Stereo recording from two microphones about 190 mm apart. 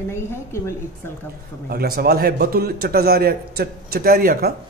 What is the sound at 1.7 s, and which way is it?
A man's voice, 55° right (ahead or behind).